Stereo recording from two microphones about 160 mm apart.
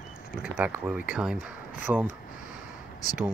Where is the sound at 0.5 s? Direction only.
10° right (ahead or behind).